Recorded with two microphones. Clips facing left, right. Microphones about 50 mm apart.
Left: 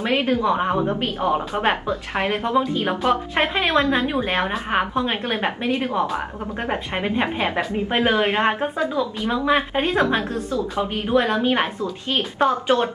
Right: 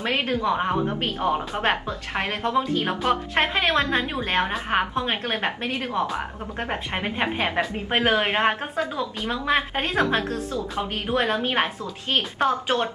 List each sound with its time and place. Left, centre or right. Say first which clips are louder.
0.0 s a woman's voice: left 4 dB; centre
2.3 s a woman's voice: left 2 dB; centre
3.0 s a woman's voice: left 3 dB; centre